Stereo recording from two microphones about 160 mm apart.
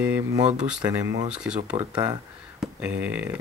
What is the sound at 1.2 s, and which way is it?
Speech, 5° right (ahead or behind).